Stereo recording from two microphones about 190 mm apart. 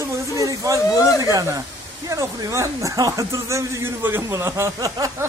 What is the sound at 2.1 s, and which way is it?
Speech, 15° right (ahead or behind).